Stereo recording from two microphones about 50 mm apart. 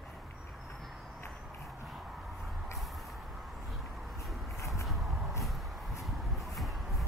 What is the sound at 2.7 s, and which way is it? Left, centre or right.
Vehicle, centre.